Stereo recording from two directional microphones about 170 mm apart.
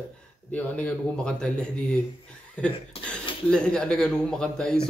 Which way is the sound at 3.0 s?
35° left (ahead or behind).